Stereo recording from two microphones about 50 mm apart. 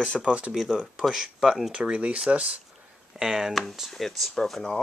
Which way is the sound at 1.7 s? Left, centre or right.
Right.